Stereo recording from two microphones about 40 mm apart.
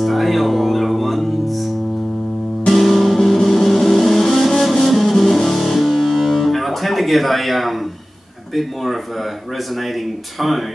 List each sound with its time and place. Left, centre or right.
0.0 s music: centre
2.7 s music: centre
8.5 s speech: centre